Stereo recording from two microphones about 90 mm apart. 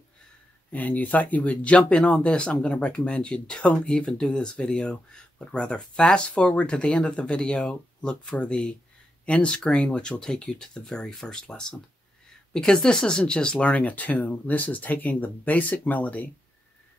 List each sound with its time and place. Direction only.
0.7 s speech: 15° left (ahead or behind)